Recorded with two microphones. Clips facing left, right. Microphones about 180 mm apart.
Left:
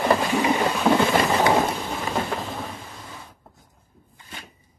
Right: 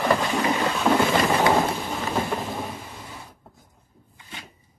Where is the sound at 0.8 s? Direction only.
5° left (ahead or behind).